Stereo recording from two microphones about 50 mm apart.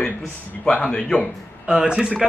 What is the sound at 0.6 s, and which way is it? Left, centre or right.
Speech, left.